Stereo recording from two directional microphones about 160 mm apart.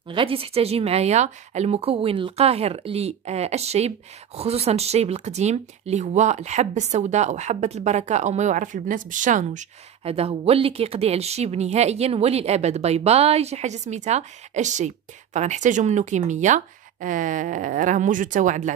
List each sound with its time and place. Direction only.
0.1 s speech: 35° right (ahead or behind); by 18.7 s 55° right (ahead or behind)